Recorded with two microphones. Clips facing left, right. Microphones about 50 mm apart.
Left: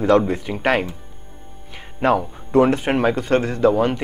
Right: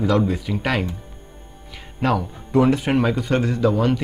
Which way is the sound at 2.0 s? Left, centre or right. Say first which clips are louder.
Left 3 dB; left.